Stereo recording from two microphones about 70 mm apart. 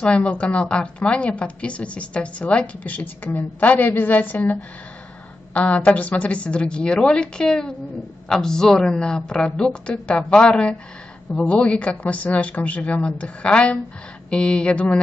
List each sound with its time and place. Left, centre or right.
0.0 s a woman's voice: centre
5.9 s a woman's voice: left